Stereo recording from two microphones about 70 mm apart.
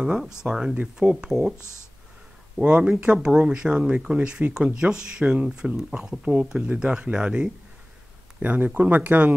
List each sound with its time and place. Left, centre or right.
0.0 s speech: centre
1.6 s speech: left
2.5 s speech: centre
8.4 s speech: right